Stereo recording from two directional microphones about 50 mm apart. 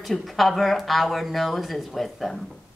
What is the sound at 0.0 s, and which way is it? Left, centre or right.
A man's voice, centre.